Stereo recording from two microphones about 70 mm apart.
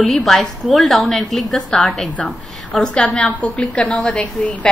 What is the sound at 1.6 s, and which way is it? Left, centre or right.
A woman's voice, centre.